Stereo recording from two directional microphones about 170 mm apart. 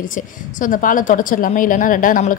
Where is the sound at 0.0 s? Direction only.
50° left (ahead or behind).